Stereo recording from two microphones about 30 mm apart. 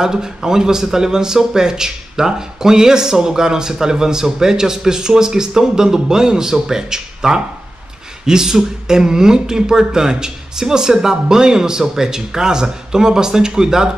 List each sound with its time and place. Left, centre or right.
0.0 s speech: right